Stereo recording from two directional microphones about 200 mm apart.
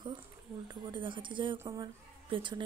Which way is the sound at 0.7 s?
20° right (ahead or behind).